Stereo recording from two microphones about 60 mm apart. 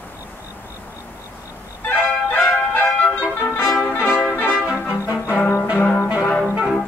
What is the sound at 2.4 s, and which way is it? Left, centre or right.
Music, centre.